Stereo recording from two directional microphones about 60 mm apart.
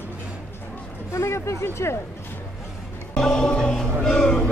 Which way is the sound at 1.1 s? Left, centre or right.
Left.